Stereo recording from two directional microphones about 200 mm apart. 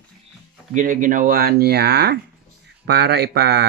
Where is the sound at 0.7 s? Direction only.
40° right (ahead or behind).